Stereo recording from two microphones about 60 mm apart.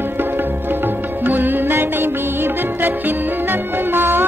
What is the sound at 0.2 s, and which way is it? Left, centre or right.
Music, right.